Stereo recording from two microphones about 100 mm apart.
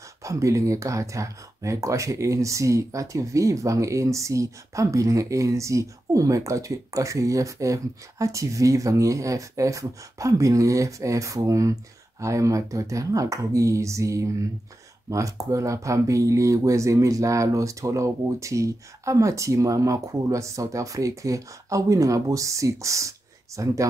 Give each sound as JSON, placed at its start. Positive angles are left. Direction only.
{"t": 0.2, "sound": "speech", "side_deg": -30}